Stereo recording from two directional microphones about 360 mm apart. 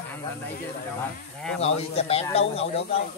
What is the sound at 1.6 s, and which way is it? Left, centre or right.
Speech, centre.